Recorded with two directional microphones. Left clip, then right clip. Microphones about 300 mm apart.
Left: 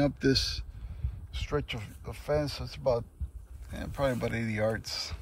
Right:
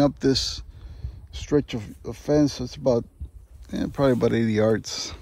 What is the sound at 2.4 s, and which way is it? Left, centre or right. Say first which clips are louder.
Speech: right 8 dB; right.